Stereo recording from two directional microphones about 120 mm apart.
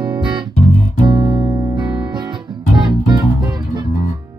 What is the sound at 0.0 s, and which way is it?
Music, 40° right (ahead or behind).